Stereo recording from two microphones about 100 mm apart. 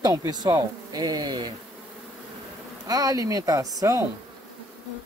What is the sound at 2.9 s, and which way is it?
A woman's voice, 35° right (ahead or behind).